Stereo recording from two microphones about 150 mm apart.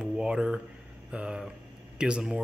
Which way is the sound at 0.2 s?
5° right (ahead or behind).